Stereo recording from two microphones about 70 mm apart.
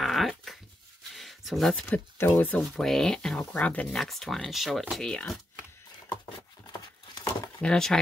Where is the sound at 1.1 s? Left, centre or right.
Centre.